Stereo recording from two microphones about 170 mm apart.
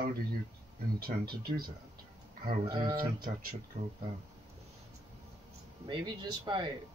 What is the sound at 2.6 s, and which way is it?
Speech, 25° right (ahead or behind).